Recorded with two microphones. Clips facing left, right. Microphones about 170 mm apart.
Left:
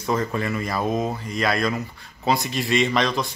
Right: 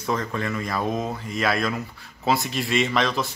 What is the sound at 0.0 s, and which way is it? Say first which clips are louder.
Speech: left 2 dB; 10° left (ahead or behind).